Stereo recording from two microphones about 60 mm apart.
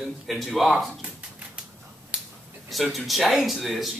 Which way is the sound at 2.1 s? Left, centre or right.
Centre.